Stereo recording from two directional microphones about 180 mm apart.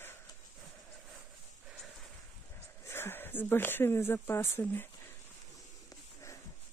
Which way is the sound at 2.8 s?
15° left (ahead or behind).